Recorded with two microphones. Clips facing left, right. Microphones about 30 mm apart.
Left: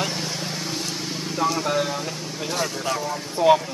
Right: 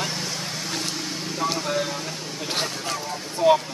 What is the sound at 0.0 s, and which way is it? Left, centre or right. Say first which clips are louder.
Vehicle: left 2 dB; centre.